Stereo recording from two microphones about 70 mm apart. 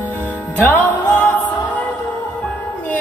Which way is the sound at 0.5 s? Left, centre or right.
Left.